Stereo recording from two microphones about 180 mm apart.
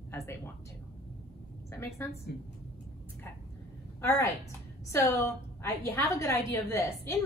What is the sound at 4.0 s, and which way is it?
A woman's voice, 15° left (ahead or behind).